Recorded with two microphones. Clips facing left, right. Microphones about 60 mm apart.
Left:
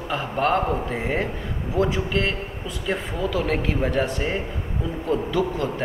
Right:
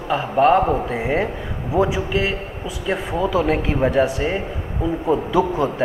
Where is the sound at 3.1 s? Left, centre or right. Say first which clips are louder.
Right 7 dB; centre.